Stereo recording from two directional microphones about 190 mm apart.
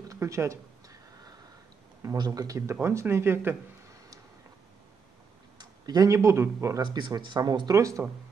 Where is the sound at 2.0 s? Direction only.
20° right (ahead or behind).